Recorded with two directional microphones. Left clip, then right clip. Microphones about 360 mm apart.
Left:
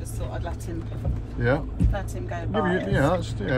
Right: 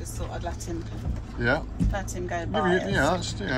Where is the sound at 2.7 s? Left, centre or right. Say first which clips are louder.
Even; centre.